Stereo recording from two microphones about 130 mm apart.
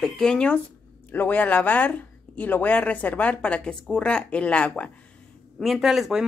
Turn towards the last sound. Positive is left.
turn(degrees=-5)  # may be behind; listen again after turning